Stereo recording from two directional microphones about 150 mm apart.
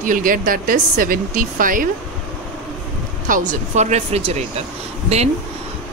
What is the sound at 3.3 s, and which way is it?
Speech, 55° right (ahead or behind).